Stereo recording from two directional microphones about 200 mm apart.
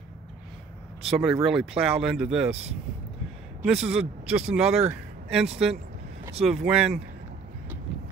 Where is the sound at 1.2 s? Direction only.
Centre (ahead or behind).